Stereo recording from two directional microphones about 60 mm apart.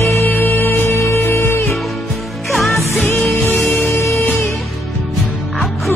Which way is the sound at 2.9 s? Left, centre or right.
Left.